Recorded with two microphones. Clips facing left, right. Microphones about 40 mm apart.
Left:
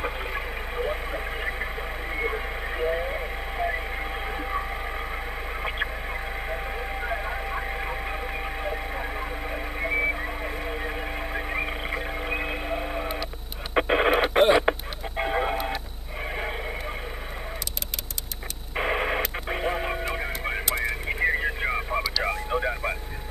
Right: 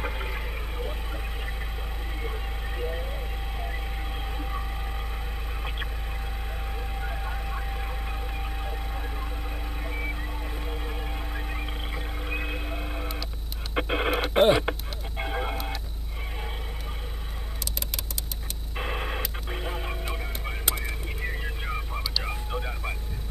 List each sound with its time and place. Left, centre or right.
0.0 s a sound: centre
2.1 s vehicle: left
6.5 s vehicle: left
10.7 s a sound: left
13.7 s radio: centre
18.8 s radio: left
20.7 s radio: left
21.6 s a sound: left
22.6 s vehicle: left